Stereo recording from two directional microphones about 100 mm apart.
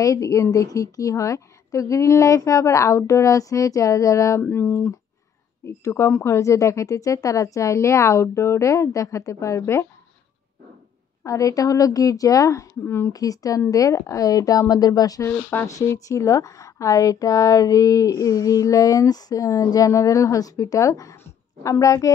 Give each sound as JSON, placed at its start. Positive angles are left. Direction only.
{"t": 0.0, "sound": "speech", "side_deg": 35}
{"t": 4.4, "sound": "speech", "side_deg": 20}
{"t": 11.2, "sound": "speech", "side_deg": 35}
{"t": 13.1, "sound": "speech", "side_deg": 35}
{"t": 21.2, "sound": "a sound", "side_deg": 30}